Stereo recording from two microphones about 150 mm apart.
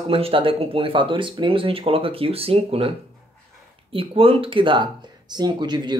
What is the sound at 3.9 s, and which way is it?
Speech, 35° right (ahead or behind).